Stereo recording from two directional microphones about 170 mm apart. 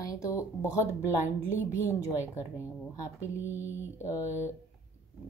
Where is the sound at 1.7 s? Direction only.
15° left (ahead or behind).